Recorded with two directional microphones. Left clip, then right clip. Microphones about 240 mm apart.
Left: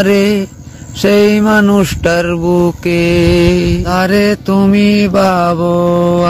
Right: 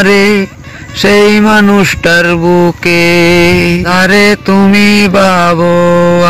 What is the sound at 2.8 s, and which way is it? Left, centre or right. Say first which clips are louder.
Mantra: right 5 dB; centre.